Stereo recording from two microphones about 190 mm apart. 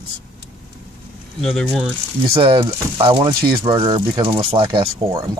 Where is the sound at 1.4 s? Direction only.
Centre (ahead or behind).